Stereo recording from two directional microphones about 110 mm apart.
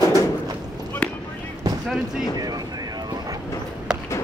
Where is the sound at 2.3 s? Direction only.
35° right (ahead or behind).